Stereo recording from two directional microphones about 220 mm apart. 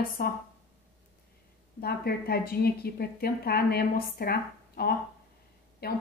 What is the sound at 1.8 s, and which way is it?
A woman's voice, 45° left (ahead or behind).